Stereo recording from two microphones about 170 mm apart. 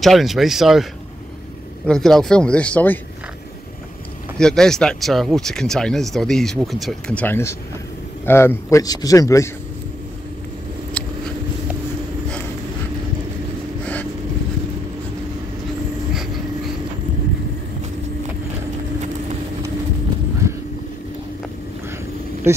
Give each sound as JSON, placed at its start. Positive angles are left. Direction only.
{"t": 0.0, "sound": "speech", "side_deg": 0}
{"t": 1.9, "sound": "speech", "side_deg": 5}
{"t": 4.4, "sound": "speech", "side_deg": 5}
{"t": 11.0, "sound": "a sound", "side_deg": 5}